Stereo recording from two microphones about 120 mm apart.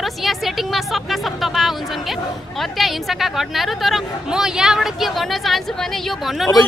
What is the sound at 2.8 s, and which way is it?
A woman's voice, centre (ahead or behind).